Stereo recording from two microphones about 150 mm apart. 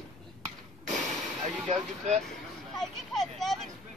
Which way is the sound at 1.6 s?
50° right (ahead or behind).